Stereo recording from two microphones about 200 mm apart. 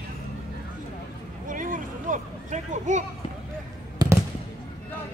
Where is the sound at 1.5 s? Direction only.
40° right (ahead or behind).